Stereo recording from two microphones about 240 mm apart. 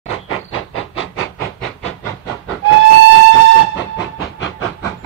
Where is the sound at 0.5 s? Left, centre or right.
Left.